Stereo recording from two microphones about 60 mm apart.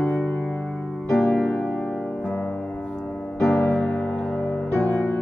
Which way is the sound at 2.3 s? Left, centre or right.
Left.